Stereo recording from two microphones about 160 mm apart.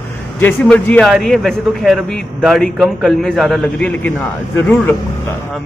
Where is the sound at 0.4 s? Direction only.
10° left (ahead or behind).